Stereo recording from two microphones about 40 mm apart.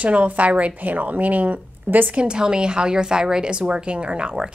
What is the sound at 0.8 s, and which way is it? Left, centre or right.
A woman's voice, right.